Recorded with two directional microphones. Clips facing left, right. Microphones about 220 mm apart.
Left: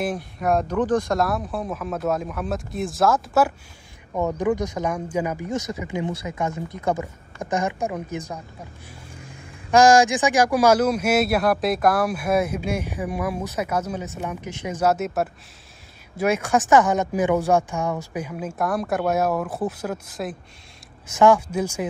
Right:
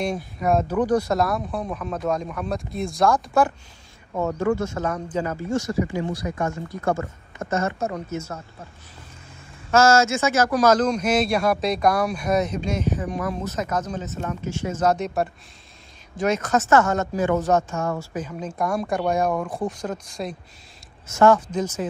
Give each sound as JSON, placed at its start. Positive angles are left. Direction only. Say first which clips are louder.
{"t": 0.0, "sound": "speech", "louder": "even", "side_deg": 0}
{"t": 4.2, "sound": "a man's voice", "louder": "even", "side_deg": 15}
{"t": 9.7, "sound": "a man's voice", "louder": "left 2 dB", "side_deg": 15}
{"t": 21.1, "sound": "a man's voice", "louder": "even", "side_deg": 15}